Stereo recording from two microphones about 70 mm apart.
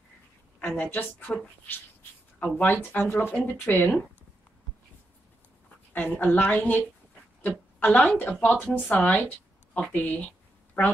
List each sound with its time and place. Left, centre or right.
0.6 s a woman's voice: left
5.9 s a woman's voice: left
9.8 s a sound: left